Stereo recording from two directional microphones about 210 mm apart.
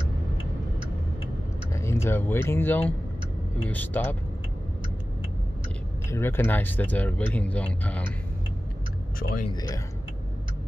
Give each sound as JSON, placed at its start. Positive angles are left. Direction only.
{"t": 1.7, "sound": "speech", "side_deg": 15}
{"t": 6.0, "sound": "speech", "side_deg": 10}
{"t": 9.2, "sound": "speech", "side_deg": 40}
{"t": 9.5, "sound": "speech", "side_deg": 20}